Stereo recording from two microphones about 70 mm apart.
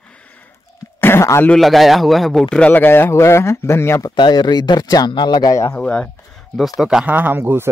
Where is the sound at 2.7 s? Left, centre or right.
Left.